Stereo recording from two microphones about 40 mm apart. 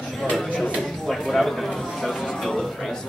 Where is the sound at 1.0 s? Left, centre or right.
Centre.